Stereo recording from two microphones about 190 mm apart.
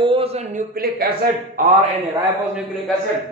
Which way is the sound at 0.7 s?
55° right (ahead or behind).